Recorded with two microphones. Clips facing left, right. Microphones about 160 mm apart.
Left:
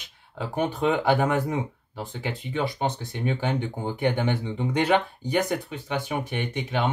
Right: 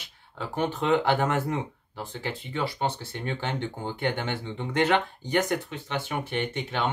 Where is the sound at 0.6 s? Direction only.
10° left (ahead or behind).